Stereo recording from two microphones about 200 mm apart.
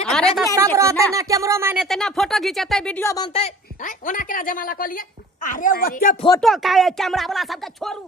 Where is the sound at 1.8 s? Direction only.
Centre (ahead or behind).